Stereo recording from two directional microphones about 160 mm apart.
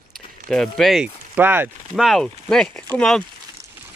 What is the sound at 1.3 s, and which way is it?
Speech, 10° right (ahead or behind).